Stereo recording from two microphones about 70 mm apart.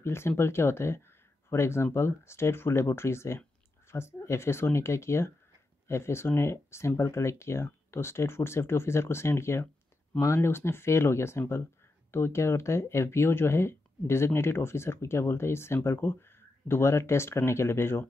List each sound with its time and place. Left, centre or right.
0.0 s speech: left